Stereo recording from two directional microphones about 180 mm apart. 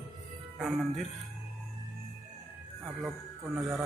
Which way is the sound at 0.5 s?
Centre (ahead or behind).